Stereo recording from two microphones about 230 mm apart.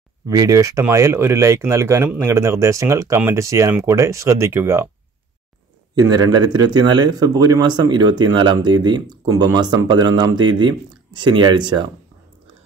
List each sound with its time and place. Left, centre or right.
0.3 s speech: centre
5.9 s speech: centre